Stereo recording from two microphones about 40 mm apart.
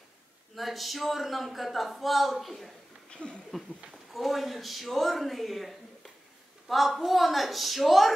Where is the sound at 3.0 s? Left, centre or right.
Left.